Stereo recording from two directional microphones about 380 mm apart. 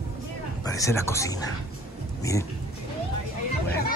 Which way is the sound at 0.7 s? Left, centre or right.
Centre.